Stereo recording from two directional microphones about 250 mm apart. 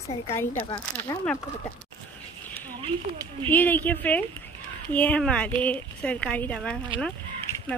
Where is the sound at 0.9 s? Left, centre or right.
Centre.